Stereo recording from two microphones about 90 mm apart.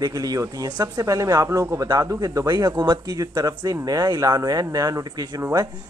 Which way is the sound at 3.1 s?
40° right (ahead or behind).